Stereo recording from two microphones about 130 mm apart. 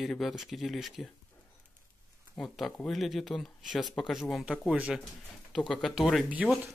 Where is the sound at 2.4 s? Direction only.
Centre (ahead or behind).